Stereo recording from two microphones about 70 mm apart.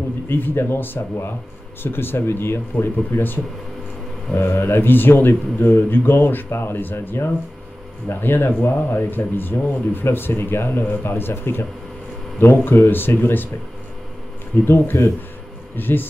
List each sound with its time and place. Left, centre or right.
0.3 s speech: left
4.4 s speech: left
14.7 s speech: left